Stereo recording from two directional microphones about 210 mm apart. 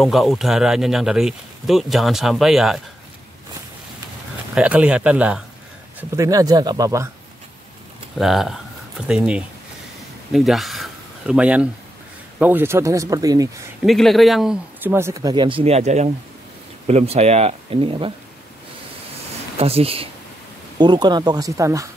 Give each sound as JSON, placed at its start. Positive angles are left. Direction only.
{"t": 0.0, "sound": "speech", "side_deg": 0}
{"t": 4.6, "sound": "speech", "side_deg": -5}
{"t": 8.2, "sound": "speech", "side_deg": 0}
{"t": 13.8, "sound": "speech", "side_deg": 0}
{"t": 19.6, "sound": "speech", "side_deg": -30}